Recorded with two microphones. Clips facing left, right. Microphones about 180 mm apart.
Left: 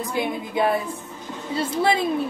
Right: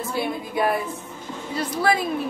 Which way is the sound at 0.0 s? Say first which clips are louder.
Left 1 dB; 15° left (ahead or behind).